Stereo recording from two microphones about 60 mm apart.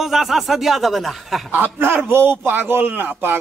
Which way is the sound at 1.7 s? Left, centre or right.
Right.